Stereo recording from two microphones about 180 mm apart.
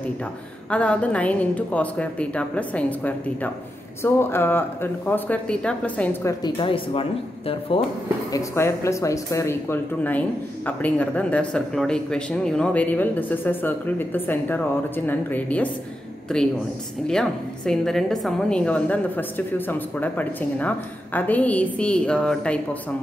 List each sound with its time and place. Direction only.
0.7 s speech: 5° left (ahead or behind)
6.4 s speech: 30° left (ahead or behind)
8.3 s speech: 15° left (ahead or behind)
17.1 s speech: 5° left (ahead or behind)